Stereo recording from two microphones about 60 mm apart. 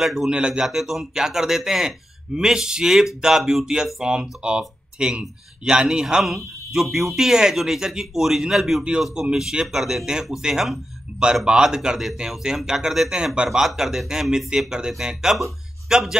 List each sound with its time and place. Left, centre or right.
0.0 s speech: centre
0.3 s speech: centre